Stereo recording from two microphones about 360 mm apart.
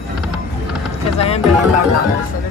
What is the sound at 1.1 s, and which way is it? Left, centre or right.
Speech, centre.